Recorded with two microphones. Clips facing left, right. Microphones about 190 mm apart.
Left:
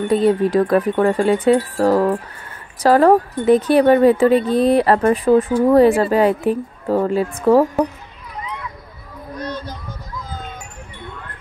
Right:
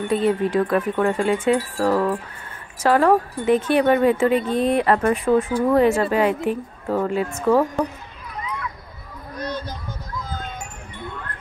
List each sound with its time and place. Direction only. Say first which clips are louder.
0.1 s speech: left 4 dB; 40° left (ahead or behind)